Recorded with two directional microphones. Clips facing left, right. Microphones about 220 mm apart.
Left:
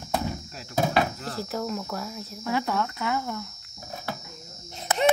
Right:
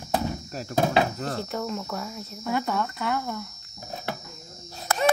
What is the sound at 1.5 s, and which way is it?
Speech, centre (ahead or behind).